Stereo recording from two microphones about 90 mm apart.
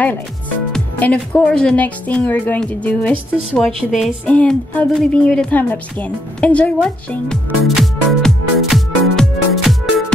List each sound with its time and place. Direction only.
0.9 s a woman's voice: 15° left (ahead or behind)
3.6 s a woman's voice: centre (ahead or behind)
4.3 s a woman's voice: 15° left (ahead or behind)
8.2 s music: centre (ahead or behind)